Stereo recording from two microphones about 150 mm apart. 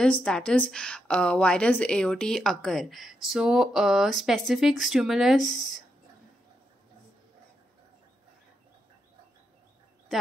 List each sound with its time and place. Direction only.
0.0 s a woman's voice: 5° left (ahead or behind)